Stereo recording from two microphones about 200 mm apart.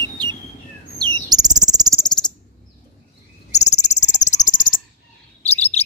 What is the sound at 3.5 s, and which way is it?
Cricket, 35° left (ahead or behind).